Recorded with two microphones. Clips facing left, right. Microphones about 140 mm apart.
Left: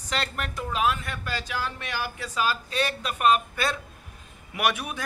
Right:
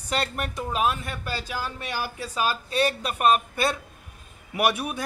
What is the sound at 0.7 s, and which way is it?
Speech, 30° right (ahead or behind).